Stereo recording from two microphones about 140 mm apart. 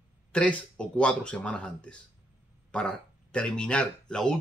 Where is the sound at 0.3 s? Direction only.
10° left (ahead or behind).